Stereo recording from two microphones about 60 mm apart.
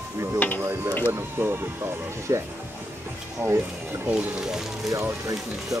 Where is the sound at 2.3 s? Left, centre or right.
Right.